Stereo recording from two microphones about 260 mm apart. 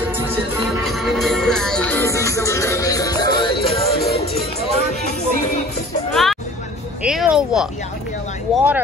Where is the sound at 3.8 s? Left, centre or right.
Left.